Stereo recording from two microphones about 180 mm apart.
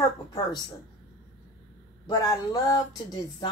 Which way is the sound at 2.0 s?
20° left (ahead or behind).